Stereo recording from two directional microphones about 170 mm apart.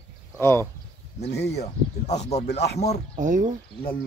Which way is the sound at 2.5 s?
80° left.